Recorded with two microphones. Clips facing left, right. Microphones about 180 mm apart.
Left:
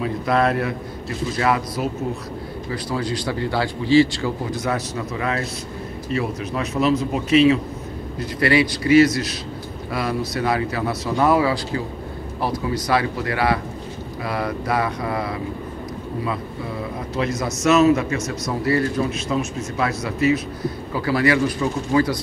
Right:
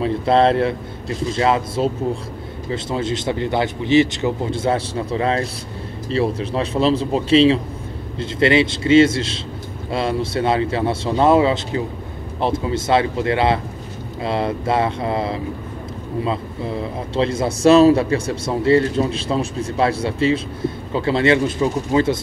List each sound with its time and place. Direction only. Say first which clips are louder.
0.0 s a man's voice: right 4 dB; 30° right (ahead or behind)
17.1 s a man's voice: right 5 dB; 30° right (ahead or behind)